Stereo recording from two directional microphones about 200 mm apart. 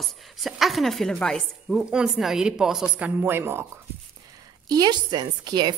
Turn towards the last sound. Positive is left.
turn(degrees=-20)  # may be behind; listen again after turning